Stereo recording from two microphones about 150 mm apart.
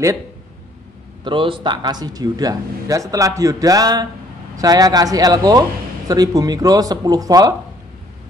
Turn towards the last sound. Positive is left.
turn(degrees=-25)  # may be behind; listen again after turning